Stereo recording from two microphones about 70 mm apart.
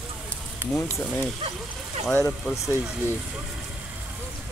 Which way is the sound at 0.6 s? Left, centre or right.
Right.